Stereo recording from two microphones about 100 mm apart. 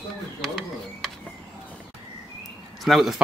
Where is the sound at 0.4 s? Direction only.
Centre (ahead or behind).